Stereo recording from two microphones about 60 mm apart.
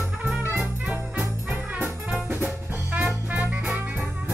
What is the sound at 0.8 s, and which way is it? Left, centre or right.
Music, right.